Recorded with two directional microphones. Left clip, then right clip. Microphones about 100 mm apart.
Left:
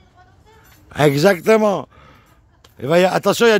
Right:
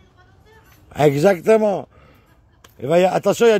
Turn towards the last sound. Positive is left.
turn(degrees=35)  # may be behind; listen again after turning